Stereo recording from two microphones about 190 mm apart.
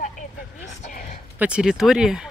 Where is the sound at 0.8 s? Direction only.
40° left (ahead or behind).